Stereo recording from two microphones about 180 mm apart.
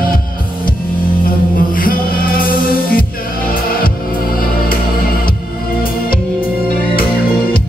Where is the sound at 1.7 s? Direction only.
50° left (ahead or behind).